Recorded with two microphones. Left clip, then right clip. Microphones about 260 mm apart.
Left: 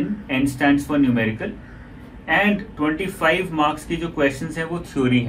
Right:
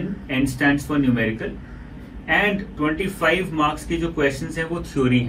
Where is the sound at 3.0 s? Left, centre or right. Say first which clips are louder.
Left 1 dB; left.